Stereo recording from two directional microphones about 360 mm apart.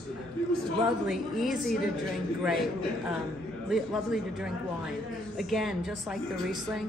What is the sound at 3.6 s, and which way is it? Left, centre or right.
A woman's voice, centre.